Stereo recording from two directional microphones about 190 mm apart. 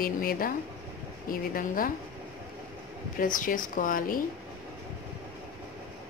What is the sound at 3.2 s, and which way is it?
A woman's voice, 45° left (ahead or behind).